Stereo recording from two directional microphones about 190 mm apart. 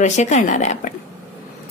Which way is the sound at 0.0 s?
35° left (ahead or behind).